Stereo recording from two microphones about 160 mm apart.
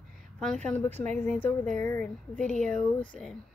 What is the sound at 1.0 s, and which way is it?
Speech, 45° right (ahead or behind).